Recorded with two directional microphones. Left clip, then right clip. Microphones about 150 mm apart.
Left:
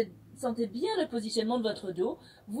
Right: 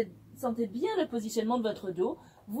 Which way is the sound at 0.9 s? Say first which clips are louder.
Even; 20° left (ahead or behind).